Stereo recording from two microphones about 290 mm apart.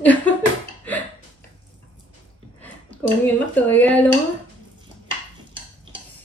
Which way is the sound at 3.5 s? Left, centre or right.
Centre.